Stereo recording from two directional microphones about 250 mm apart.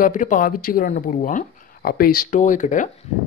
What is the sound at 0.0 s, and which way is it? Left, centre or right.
Speech, left.